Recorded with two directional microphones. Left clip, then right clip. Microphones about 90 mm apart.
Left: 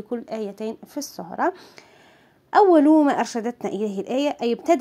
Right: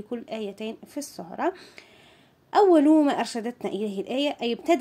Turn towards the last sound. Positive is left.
turn(degrees=35)  # may be behind; listen again after turning